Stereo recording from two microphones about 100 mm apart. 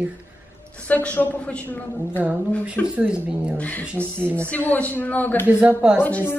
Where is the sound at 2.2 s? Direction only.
15° right (ahead or behind).